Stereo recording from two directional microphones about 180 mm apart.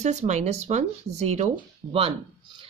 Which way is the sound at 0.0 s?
40° right (ahead or behind).